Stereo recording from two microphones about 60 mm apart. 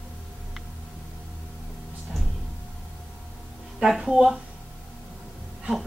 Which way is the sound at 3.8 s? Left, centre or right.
Centre.